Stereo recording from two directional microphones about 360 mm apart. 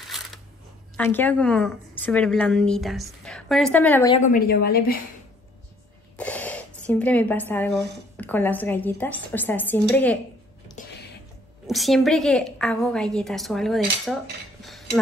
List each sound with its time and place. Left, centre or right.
0.0 s a sound: centre
0.9 s a woman's voice: centre
4.2 s a woman's voice: left
6.1 s speech: centre
11.6 s a woman's voice: centre
14.6 s cutlery: centre